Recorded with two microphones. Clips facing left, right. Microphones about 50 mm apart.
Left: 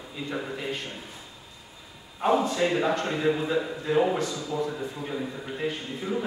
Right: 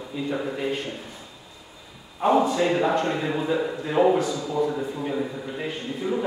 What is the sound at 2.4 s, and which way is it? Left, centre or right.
A man's voice, centre.